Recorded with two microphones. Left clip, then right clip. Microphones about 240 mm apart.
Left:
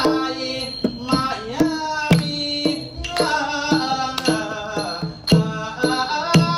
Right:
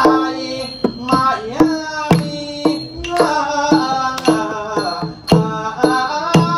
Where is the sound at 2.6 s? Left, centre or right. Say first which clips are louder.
Right 5 dB; centre.